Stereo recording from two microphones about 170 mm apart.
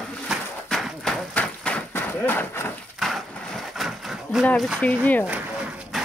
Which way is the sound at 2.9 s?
Centre (ahead or behind).